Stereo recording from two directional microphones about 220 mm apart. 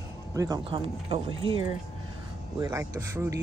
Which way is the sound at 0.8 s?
25° right (ahead or behind).